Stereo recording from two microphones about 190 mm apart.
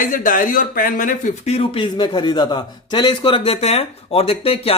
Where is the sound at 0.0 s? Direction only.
45° left (ahead or behind).